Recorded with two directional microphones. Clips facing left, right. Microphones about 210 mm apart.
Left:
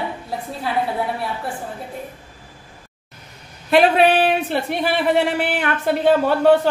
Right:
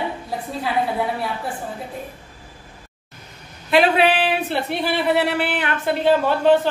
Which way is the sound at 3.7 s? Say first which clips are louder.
Left 2 dB; 45° left (ahead or behind).